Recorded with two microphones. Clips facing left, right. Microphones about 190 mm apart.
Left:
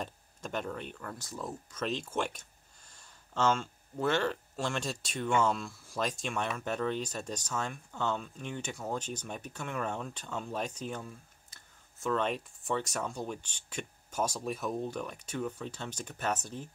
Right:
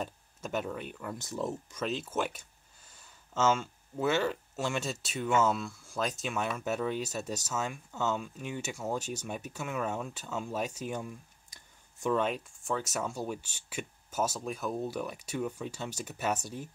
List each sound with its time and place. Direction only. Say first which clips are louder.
0.0 s speech: right 2 dB; 5° right (ahead or behind)
1.1 s speech: right 9 dB; 20° right (ahead or behind)
1.7 s speech: right 1 dB; 5° right (ahead or behind)
12.3 s speech: even; centre (ahead or behind)